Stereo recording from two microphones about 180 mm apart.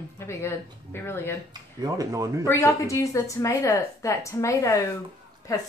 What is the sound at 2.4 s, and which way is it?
A woman's voice, 15° left (ahead or behind).